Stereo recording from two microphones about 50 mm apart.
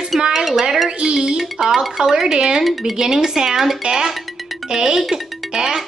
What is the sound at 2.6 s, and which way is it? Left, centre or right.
Dishes, centre.